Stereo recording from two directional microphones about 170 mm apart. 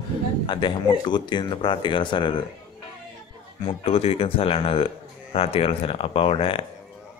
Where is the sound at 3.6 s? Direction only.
35° left (ahead or behind).